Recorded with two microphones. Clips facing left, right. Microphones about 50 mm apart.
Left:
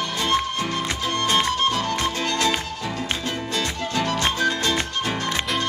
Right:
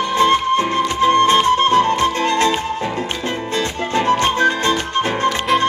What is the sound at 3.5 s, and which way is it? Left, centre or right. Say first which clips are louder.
Music: right 6 dB; right.